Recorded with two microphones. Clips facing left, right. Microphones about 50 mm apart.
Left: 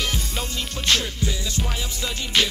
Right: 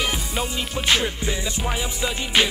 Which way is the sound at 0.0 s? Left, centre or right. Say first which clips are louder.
Right 3 dB; centre.